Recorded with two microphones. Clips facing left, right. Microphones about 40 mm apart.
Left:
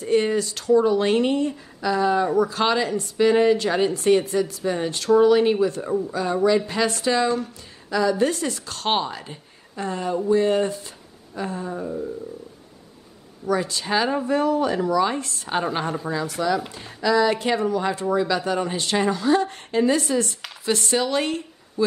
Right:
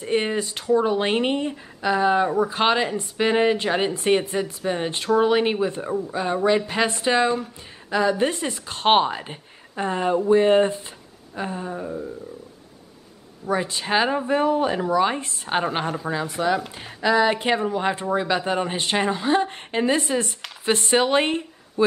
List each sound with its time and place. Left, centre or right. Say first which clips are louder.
0.0 s speech: left 3 dB; right
5.9 s speech: left 2 dB; centre
6.1 s speech: even; right; by 12.1 s centre
13.5 s speech: even; right
15.8 s speech: even; centre
16.1 s speech: right 1 dB; right